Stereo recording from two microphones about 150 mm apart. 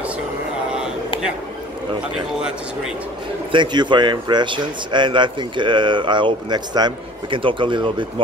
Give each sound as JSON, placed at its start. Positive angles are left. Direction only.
{"t": 3.5, "sound": "speech", "side_deg": -30}